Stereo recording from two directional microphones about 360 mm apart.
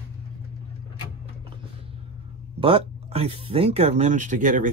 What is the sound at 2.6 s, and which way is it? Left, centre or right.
Speech, centre.